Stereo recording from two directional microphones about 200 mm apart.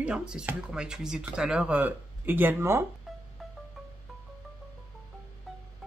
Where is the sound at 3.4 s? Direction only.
Centre (ahead or behind).